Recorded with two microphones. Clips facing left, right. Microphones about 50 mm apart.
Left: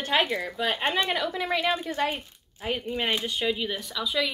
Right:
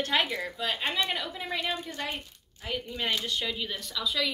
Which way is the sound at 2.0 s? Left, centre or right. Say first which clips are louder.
Left 9 dB; left.